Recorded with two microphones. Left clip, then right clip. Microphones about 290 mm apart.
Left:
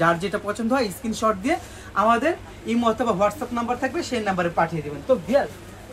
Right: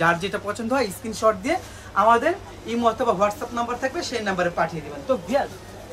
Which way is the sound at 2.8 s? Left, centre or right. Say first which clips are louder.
Right 1 dB; left.